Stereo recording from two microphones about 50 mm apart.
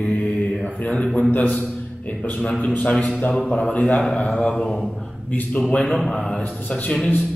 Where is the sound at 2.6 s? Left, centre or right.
Left.